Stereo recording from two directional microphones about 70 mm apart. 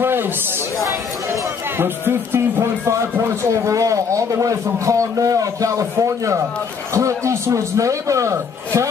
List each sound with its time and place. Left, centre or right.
0.0 s chatter: right
1.8 s a sound: right
6.9 s a man's voice: right